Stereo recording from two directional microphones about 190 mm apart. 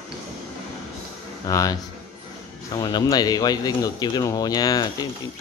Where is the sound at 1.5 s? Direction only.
15° left (ahead or behind).